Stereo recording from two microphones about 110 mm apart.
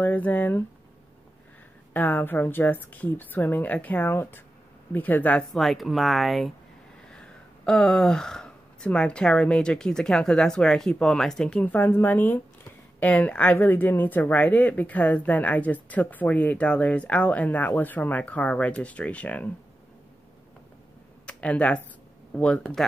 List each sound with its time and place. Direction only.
0.0 s speech: 15° left (ahead or behind)
2.0 s speech: 15° left (ahead or behind)
5.5 s speech: centre (ahead or behind)
21.3 s speech: 10° left (ahead or behind)